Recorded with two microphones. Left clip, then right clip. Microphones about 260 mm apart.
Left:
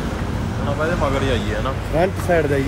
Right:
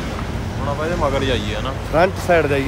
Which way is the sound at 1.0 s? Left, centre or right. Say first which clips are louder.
Right 1 dB; right.